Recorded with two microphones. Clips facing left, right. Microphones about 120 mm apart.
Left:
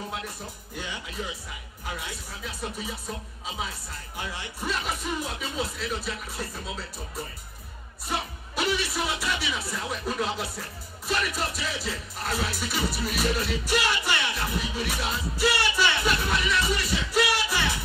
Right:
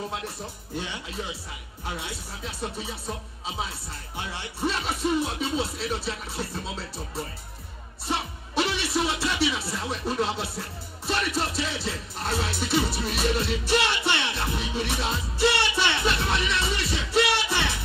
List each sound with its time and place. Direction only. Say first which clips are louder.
2.0 s music: right 2 dB; 30° right (ahead or behind)
4.3 s music: right 4 dB; 30° right (ahead or behind)
8.1 s speech: right 2 dB; 30° right (ahead or behind)